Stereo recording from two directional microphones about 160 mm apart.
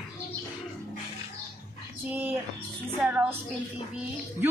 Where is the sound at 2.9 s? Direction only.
10° right (ahead or behind).